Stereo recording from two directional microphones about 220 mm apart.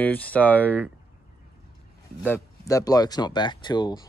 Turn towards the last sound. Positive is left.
turn(degrees=20)  # may be behind; listen again after turning